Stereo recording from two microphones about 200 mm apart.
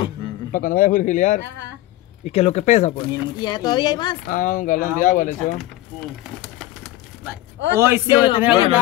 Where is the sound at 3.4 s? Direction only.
20° left (ahead or behind).